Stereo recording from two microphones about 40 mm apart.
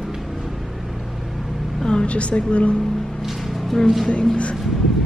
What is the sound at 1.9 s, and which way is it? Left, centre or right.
Speech, left.